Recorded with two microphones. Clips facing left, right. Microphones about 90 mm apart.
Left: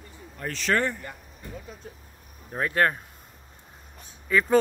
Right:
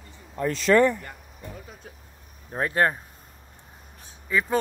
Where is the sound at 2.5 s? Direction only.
25° right (ahead or behind).